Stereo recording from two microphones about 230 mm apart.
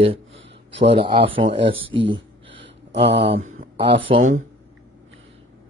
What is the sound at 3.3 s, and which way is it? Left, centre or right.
Speech, right.